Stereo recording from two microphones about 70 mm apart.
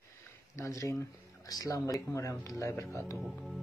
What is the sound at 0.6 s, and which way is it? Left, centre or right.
Speech, left.